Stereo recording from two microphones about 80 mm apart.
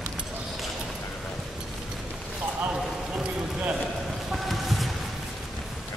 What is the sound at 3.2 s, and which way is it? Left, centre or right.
Run, centre.